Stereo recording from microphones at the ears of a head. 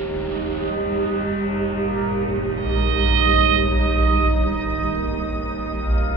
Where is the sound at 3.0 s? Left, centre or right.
Right.